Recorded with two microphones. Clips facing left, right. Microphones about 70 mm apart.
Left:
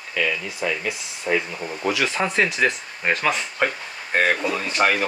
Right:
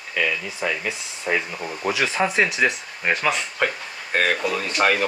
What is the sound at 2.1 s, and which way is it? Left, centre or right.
Speech, centre.